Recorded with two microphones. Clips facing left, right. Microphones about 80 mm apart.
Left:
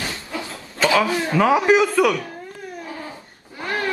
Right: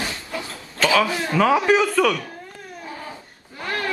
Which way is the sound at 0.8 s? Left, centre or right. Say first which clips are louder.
Left 1 dB; left.